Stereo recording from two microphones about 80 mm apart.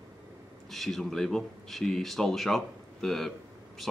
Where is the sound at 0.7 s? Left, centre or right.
Centre.